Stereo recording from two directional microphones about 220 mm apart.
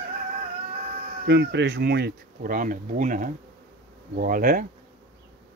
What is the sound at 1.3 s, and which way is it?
Speech, 50° right (ahead or behind).